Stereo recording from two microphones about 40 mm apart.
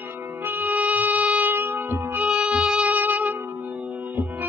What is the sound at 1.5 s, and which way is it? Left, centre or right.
Music, right.